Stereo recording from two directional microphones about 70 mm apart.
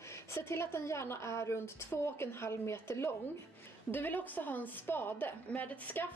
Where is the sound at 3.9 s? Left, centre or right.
Left.